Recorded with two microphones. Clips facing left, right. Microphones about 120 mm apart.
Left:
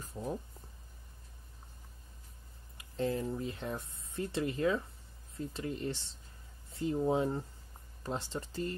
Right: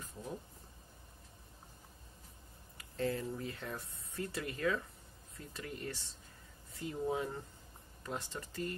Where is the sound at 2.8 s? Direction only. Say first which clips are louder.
Left 3 dB; 20° left (ahead or behind).